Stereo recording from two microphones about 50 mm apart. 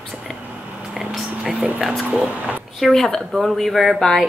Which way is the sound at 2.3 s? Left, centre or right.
Right.